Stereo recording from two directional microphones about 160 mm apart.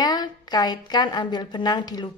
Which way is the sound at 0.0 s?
25° left (ahead or behind).